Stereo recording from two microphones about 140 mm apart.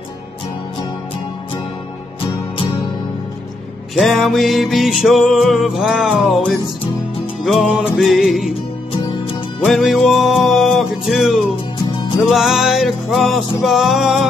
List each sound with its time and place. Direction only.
2.2 s music: 40° left (ahead or behind)
3.9 s music: centre (ahead or behind)
8.9 s music: 40° left (ahead or behind)
9.7 s music: centre (ahead or behind)